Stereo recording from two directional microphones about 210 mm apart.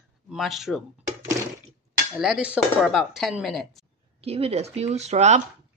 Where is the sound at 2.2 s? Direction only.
5° right (ahead or behind).